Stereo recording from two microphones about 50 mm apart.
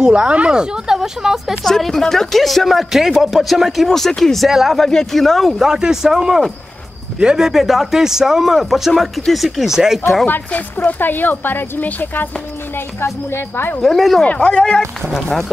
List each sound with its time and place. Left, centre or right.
0.0 s speech: centre
1.6 s speech: centre
3.9 s speech: centre
4.5 s speech: centre
4.7 s speech: centre
10.9 s speech: left
13.0 s a woman's voice: left
13.8 s speech: centre
14.2 s speech: left